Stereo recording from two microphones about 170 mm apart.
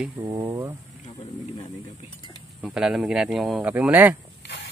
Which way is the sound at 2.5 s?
5° right (ahead or behind).